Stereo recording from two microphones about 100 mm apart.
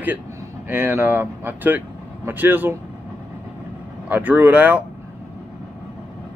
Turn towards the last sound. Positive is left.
turn(degrees=-15)  # may be behind; listen again after turning